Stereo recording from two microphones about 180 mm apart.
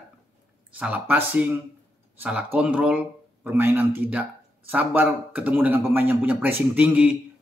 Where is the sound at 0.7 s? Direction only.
10° right (ahead or behind).